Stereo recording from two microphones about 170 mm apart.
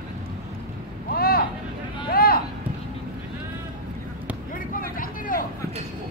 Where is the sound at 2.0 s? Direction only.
60° left (ahead or behind).